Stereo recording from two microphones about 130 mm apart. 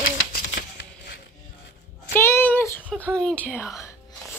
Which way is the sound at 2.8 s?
15° right (ahead or behind).